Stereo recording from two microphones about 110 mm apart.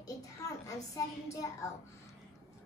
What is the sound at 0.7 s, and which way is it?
Speech, 30° left (ahead or behind).